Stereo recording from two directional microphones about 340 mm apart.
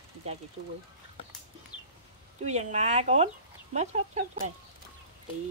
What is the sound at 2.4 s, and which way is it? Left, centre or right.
Speech, centre.